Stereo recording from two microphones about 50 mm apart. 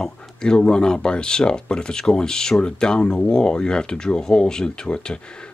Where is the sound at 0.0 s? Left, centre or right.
Centre.